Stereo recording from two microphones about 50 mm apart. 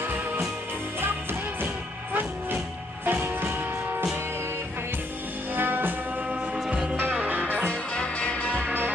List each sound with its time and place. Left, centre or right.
3.1 s music: right
5.5 s music: right
7.0 s music: right
7.5 s music: left